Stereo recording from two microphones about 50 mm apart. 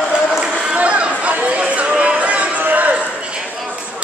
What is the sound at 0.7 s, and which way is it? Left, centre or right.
Chatter, right.